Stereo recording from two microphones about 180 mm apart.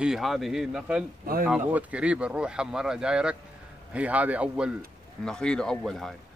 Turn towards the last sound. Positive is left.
turn(degrees=0)  # may be behind; listen again after turning